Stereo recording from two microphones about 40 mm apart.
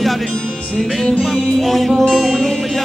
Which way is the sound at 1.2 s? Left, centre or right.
Centre.